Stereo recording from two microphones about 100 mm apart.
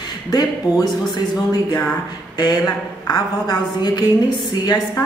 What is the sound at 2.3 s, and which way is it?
A woman's voice, 40° left (ahead or behind).